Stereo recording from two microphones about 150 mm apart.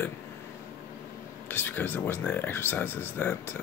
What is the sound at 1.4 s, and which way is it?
Speech, 15° left (ahead or behind).